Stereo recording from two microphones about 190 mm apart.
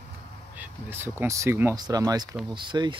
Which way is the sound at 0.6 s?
10° right (ahead or behind).